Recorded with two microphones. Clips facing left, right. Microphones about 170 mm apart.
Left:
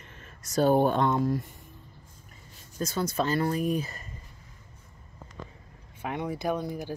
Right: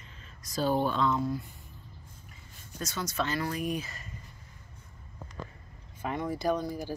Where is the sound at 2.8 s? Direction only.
35° left (ahead or behind).